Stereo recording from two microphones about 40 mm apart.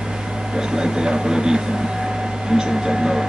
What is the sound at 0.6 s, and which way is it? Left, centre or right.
Speech, centre.